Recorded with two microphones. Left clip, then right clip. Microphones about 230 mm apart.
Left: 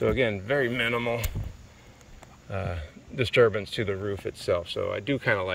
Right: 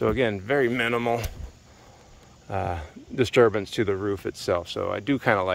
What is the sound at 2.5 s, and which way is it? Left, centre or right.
Speech, centre.